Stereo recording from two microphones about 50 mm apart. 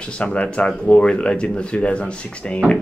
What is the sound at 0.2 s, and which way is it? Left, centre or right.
Speech, left.